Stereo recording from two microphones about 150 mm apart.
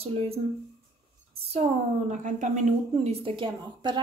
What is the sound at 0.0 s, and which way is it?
A woman's voice, 40° right (ahead or behind).